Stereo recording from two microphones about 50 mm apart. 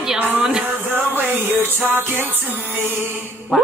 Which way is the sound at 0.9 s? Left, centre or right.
Right.